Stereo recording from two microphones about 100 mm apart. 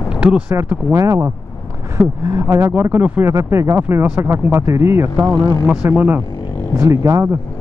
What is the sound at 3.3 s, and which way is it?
A man's voice, 30° right (ahead or behind).